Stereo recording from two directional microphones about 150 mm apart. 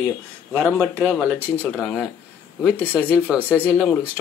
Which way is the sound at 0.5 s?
Centre (ahead or behind).